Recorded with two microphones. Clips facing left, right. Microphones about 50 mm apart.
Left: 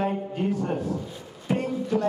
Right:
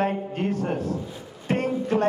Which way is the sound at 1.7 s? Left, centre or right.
Right.